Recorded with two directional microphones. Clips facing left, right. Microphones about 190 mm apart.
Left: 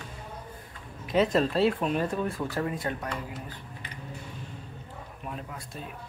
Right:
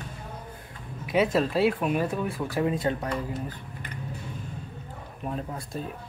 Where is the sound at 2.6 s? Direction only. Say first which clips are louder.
Right 5 dB; 25° right (ahead or behind).